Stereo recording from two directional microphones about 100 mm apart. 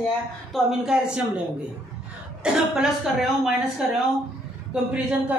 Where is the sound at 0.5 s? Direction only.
5° right (ahead or behind).